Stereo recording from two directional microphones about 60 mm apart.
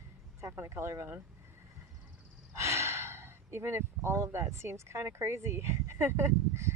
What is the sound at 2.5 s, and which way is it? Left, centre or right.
Speech, right.